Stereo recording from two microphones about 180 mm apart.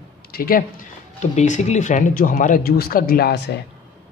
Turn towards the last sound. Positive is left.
turn(degrees=65)  # may be behind; listen again after turning